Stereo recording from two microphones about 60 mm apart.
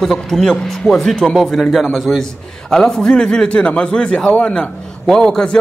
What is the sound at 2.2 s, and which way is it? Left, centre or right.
A man's voice, centre.